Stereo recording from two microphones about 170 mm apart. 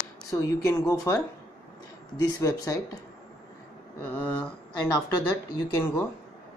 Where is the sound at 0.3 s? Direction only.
20° left (ahead or behind).